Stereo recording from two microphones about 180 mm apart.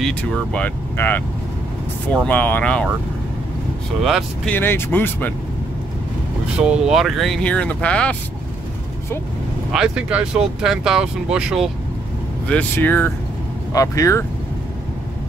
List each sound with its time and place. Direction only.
0.0 s speech: 5° left (ahead or behind)
4.0 s speech: centre (ahead or behind)
4.6 s speech: 10° left (ahead or behind)
6.6 s speech: 5° right (ahead or behind)
9.7 s speech: 5° right (ahead or behind)
12.4 s speech: 10° left (ahead or behind)